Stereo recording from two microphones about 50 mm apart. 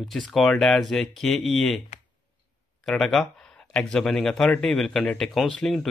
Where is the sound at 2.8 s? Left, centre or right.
Centre.